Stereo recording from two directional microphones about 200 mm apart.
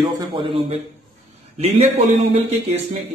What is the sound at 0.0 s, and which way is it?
A man's voice, 25° right (ahead or behind).